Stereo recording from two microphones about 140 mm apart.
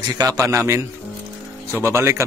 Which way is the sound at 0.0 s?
30° right (ahead or behind).